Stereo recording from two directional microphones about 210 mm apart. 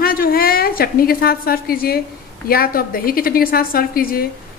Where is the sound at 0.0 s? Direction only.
45° left (ahead or behind).